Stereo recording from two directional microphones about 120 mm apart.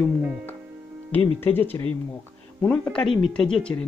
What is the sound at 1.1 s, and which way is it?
Speech, 15° left (ahead or behind).